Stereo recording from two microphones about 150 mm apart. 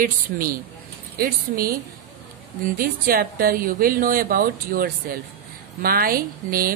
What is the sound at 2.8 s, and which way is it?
Speech, 75° right (ahead or behind).